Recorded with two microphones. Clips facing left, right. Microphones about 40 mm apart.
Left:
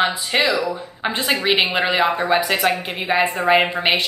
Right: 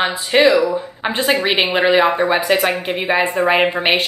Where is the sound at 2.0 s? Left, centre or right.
Right.